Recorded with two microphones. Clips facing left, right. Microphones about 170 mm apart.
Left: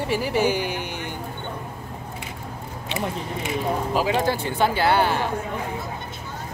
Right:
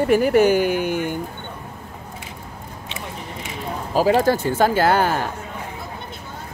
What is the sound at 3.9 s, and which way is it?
Speech, 40° right (ahead or behind).